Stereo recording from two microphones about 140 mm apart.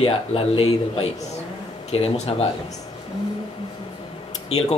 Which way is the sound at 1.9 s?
50° left (ahead or behind).